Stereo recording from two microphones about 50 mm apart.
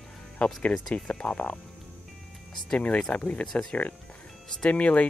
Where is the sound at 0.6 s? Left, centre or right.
Left.